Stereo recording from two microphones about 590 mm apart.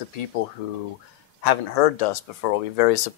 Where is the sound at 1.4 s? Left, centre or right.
Left.